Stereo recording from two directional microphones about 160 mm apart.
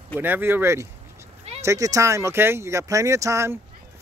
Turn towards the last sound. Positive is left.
turn(degrees=-20)  # may be behind; listen again after turning